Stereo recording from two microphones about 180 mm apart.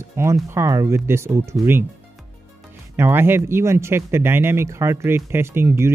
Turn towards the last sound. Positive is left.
turn(degrees=-15)  # may be behind; listen again after turning